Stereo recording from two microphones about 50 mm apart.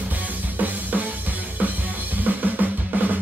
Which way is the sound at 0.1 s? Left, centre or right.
Right.